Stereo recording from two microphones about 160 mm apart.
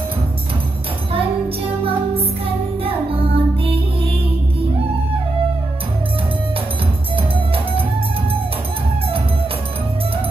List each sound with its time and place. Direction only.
2.1 s music: 35° right (ahead or behind)
7.2 s music: 35° right (ahead or behind)